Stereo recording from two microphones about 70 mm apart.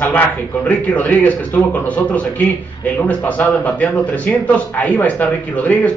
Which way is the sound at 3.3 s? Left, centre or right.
Left.